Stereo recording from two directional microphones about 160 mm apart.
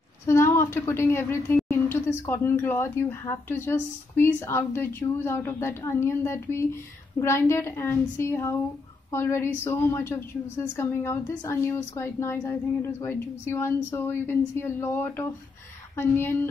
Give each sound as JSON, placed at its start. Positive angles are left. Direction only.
{"t": 0.3, "sound": "speech", "side_deg": 15}